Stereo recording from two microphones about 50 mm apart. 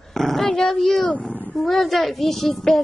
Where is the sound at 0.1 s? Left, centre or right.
Centre.